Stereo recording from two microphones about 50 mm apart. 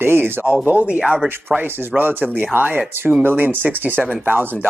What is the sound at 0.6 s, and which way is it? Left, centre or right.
Speech, right.